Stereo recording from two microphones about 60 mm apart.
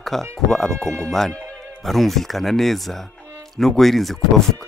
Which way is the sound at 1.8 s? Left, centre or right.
Centre.